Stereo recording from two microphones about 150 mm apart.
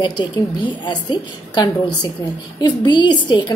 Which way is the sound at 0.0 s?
30° left (ahead or behind).